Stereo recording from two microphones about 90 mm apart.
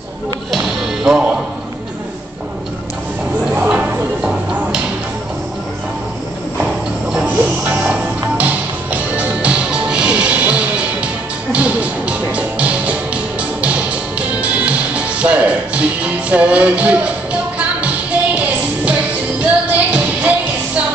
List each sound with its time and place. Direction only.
0.5 s music: centre (ahead or behind)
3.5 s a sound: 15° right (ahead or behind)
6.6 s clip-clop: 5° right (ahead or behind)
7.2 s music: 15° right (ahead or behind)